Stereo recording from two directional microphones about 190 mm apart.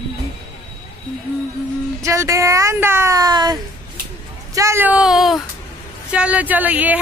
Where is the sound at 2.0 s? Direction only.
15° right (ahead or behind).